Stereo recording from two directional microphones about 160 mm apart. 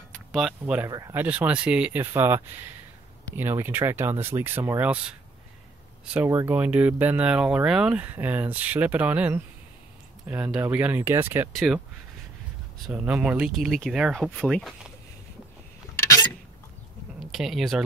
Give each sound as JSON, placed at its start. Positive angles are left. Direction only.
{"t": 0.1, "sound": "speech", "side_deg": 0}
{"t": 0.8, "sound": "speech", "side_deg": -20}
{"t": 1.2, "sound": "speech", "side_deg": -10}
{"t": 11.5, "sound": "speech", "side_deg": 0}
{"t": 12.8, "sound": "speech", "side_deg": -5}
{"t": 17.3, "sound": "speech", "side_deg": 0}